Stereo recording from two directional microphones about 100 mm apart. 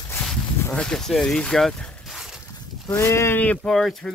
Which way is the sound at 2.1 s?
5° right (ahead or behind).